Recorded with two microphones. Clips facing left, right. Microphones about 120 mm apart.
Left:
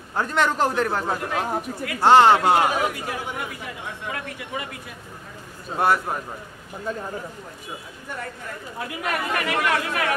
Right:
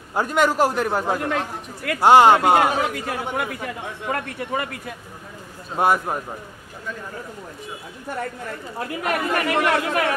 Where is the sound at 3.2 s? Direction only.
60° right (ahead or behind).